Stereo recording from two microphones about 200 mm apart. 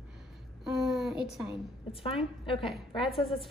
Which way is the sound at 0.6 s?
Centre (ahead or behind).